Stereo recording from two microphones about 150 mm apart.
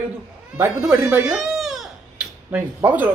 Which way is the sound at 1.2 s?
Centre (ahead or behind).